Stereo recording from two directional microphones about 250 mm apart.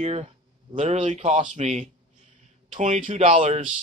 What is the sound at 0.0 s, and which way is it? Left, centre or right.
Speech, right.